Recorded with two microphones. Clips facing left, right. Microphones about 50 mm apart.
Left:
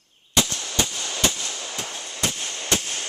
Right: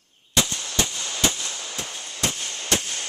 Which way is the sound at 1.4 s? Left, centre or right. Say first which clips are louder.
Left 1 dB; centre.